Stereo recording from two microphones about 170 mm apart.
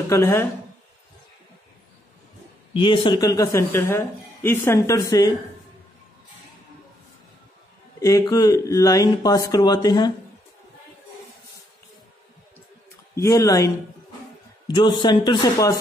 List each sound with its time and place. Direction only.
0.1 s speech: 15° left (ahead or behind)
2.7 s a man's voice: 30° left (ahead or behind)
8.0 s a man's voice: 20° left (ahead or behind)
13.1 s a man's voice: 20° left (ahead or behind)